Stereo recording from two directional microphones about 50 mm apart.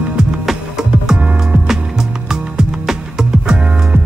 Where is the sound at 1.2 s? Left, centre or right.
Right.